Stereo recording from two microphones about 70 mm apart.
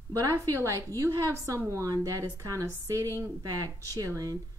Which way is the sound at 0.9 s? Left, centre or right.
Right.